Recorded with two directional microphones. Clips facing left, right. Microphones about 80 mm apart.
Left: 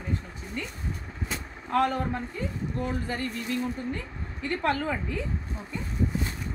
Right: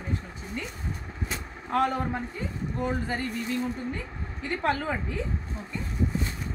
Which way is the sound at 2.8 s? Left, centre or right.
Centre.